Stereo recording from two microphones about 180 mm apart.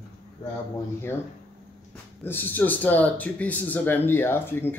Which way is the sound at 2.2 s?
10° left (ahead or behind).